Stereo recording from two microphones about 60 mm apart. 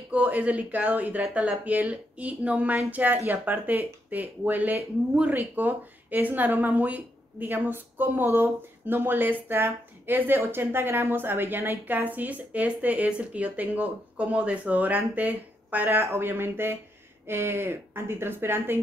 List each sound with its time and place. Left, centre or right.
0.1 s speech: right